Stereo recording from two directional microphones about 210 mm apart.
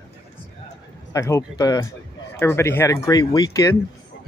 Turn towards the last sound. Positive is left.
turn(degrees=15)  # may be behind; listen again after turning